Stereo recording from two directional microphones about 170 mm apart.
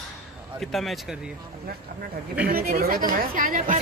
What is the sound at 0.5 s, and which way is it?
Speech, centre (ahead or behind).